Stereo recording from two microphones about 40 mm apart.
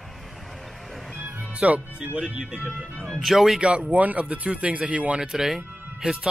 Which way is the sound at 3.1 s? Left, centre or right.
Centre.